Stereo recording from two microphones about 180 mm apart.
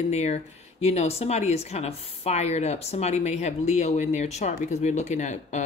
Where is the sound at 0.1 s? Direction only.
40° left (ahead or behind).